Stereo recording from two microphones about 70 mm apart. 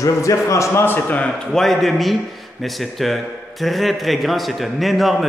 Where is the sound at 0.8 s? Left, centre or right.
Left.